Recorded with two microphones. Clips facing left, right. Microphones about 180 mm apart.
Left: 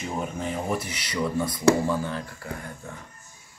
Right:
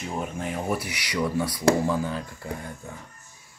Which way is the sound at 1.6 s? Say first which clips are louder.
Left 1 dB; 10° right (ahead or behind).